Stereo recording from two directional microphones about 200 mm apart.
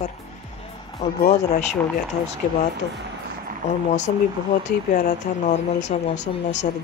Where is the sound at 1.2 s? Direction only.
35° left (ahead or behind).